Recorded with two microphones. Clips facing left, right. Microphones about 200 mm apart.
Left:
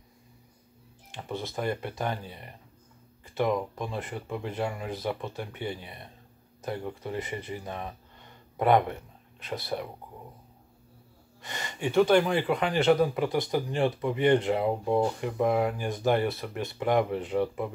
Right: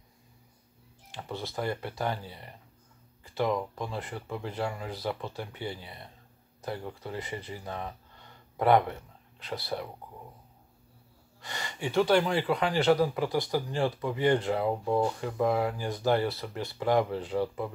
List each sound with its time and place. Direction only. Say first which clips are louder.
1.1 s speech: left 2 dB; 20° left (ahead or behind)
11.4 s speech: left 3 dB; 20° left (ahead or behind)